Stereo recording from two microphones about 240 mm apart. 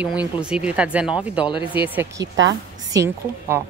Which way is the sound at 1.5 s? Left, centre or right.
Left.